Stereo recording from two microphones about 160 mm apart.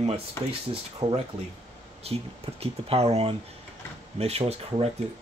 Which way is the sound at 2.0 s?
40° right (ahead or behind).